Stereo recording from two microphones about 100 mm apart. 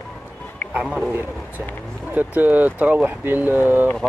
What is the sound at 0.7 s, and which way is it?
Speech, 5° right (ahead or behind).